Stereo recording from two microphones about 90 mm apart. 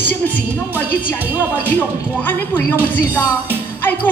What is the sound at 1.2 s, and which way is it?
Speech, 20° right (ahead or behind).